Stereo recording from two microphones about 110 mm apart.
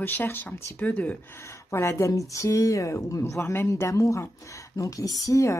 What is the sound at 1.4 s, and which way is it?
Speech, 25° left (ahead or behind).